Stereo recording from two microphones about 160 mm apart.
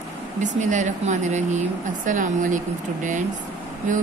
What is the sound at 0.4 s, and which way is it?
A woman's voice, 50° right (ahead or behind).